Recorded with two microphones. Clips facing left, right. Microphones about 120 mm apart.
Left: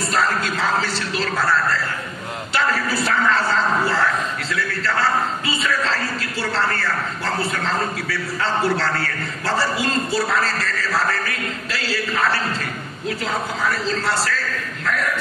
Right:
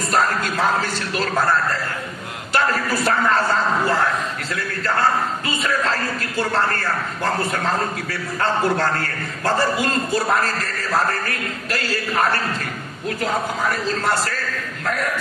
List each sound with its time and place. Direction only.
0.1 s music: 45° right (ahead or behind)
2.5 s music: 45° right (ahead or behind)
3.1 s speech: 45° right (ahead or behind)
4.8 s a sound: 50° right (ahead or behind)
8.7 s speech: 45° right (ahead or behind)
11.1 s speech: 50° right (ahead or behind)